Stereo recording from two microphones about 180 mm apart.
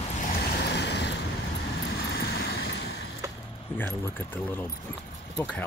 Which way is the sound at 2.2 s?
65° left (ahead or behind).